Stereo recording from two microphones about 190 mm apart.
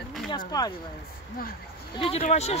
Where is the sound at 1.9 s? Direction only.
30° left (ahead or behind).